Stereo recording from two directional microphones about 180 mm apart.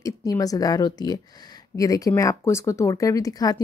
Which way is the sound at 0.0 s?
20° left (ahead or behind).